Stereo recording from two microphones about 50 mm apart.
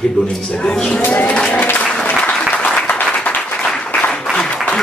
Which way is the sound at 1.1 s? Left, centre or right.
Left.